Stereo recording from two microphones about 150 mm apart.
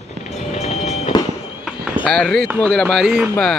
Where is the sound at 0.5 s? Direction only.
45° left (ahead or behind).